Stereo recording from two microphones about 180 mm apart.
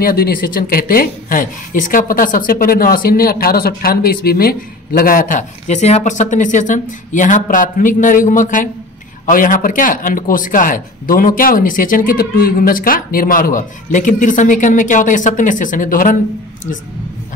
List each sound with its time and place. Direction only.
0.0 s speech: 55° left (ahead or behind)